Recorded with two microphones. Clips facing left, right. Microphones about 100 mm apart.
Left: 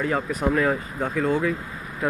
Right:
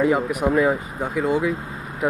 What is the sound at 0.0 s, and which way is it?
Speech, 15° right (ahead or behind).